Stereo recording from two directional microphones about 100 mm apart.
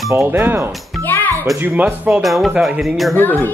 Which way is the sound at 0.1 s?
25° right (ahead or behind).